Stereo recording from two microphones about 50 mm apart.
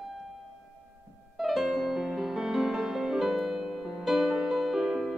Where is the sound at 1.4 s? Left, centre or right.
Centre.